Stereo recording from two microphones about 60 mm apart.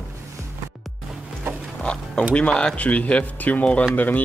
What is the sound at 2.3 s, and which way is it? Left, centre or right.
Speech, centre.